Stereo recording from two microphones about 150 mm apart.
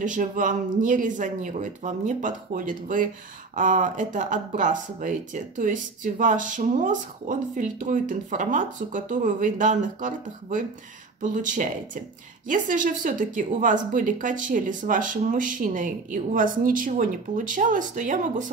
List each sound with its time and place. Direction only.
0.0 s speech: 60° right (ahead or behind)